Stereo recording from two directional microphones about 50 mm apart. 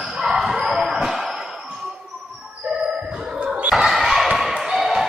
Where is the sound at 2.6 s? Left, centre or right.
Right.